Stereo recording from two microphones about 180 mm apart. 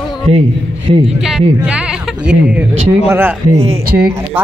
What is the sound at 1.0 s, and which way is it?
Speech, 5° right (ahead or behind).